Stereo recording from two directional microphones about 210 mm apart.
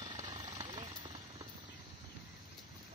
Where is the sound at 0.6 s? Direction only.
20° right (ahead or behind).